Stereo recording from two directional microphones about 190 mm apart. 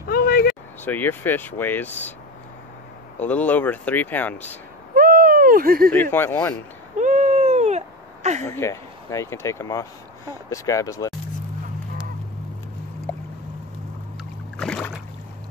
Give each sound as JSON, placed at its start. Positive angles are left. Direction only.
{"t": 0.0, "sound": "a sound", "side_deg": 50}
{"t": 0.8, "sound": "speech", "side_deg": 10}
{"t": 3.2, "sound": "speech", "side_deg": 10}
{"t": 4.9, "sound": "owl", "side_deg": -50}
{"t": 5.9, "sound": "speech", "side_deg": 10}
{"t": 7.0, "sound": "owl", "side_deg": -40}
{"t": 8.5, "sound": "speech", "side_deg": 15}
{"t": 14.6, "sound": "boat", "side_deg": 5}